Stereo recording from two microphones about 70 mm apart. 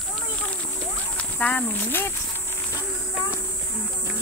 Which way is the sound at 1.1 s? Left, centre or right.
Centre.